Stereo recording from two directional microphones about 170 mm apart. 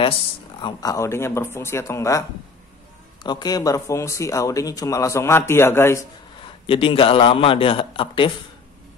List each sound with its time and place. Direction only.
0.6 s speech: 25° left (ahead or behind)
3.3 s speech: 25° left (ahead or behind)
6.6 s a man's voice: 30° left (ahead or behind)